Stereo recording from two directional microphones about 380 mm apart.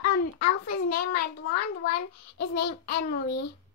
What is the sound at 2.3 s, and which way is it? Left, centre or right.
Speech, left.